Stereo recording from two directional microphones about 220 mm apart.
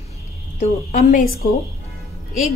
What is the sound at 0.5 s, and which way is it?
Speech, 35° left (ahead or behind).